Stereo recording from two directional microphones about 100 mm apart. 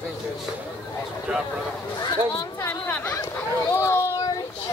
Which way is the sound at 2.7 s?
15° left (ahead or behind).